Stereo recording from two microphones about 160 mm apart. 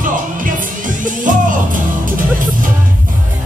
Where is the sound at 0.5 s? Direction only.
55° right (ahead or behind).